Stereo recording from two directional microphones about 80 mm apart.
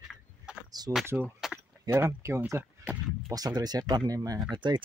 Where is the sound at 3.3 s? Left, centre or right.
Right.